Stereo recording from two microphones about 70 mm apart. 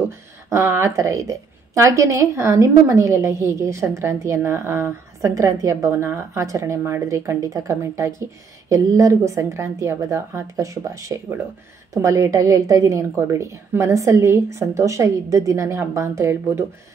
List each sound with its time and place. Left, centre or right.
0.5 s a woman's voice: right
5.3 s a woman's voice: right